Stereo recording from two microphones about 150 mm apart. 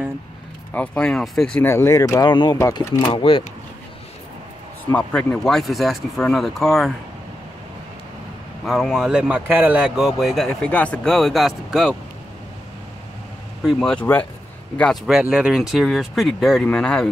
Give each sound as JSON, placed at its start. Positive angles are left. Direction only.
{"t": 0.7, "sound": "speech", "side_deg": 5}
{"t": 2.5, "sound": "speech", "side_deg": 20}
{"t": 3.1, "sound": "speech", "side_deg": 35}
{"t": 4.9, "sound": "speech", "side_deg": 5}
{"t": 8.6, "sound": "speech", "side_deg": 0}
{"t": 13.7, "sound": "speech", "side_deg": 5}